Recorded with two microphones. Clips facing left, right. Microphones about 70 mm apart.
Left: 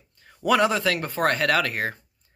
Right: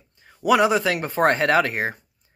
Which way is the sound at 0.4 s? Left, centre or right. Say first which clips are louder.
Right 3 dB; centre.